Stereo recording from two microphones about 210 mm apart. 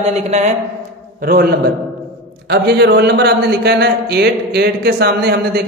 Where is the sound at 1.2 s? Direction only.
45° right (ahead or behind).